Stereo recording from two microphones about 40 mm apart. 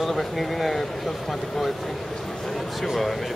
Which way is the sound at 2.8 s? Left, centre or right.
Centre.